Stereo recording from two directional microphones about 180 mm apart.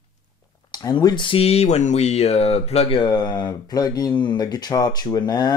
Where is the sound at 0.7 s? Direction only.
20° left (ahead or behind).